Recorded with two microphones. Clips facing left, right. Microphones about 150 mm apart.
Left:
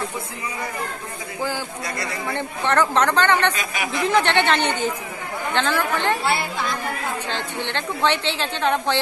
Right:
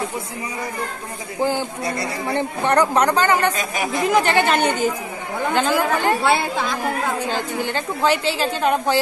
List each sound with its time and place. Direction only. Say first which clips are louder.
1.4 s a man's voice: right 6 dB; 25° right (ahead or behind)
2.3 s a woman's voice: right 3 dB; 15° right (ahead or behind)
3.5 s speech: right 3 dB; 40° right (ahead or behind)
4.1 s a woman's voice: right 1 dB; 10° right (ahead or behind)
6.2 s speech: right 4 dB; 90° right
7.6 s a woman's voice: right 1 dB; 10° right (ahead or behind)